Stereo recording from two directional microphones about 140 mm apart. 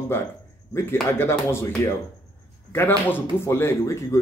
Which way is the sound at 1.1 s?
20° left (ahead or behind).